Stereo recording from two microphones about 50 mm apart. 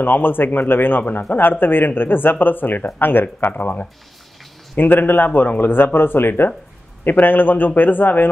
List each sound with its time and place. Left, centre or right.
0.0 s a man's voice: left